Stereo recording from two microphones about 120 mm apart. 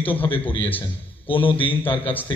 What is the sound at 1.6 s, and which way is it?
Speech, 15° left (ahead or behind).